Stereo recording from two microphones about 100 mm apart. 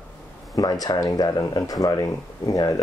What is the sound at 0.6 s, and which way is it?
Speech, 40° left (ahead or behind).